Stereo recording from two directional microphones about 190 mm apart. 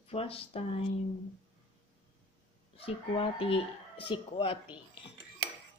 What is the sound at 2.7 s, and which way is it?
A woman's voice, 30° left (ahead or behind).